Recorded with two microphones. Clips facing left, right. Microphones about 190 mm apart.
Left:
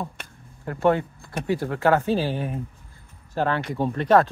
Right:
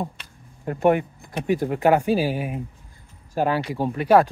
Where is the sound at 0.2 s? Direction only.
50° left (ahead or behind).